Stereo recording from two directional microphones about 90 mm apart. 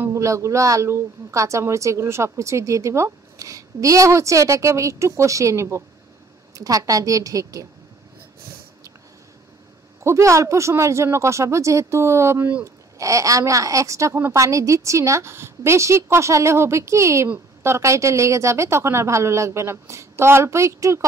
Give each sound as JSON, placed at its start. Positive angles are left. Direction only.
{"t": 0.0, "sound": "speech", "side_deg": -35}
{"t": 10.0, "sound": "speech", "side_deg": -35}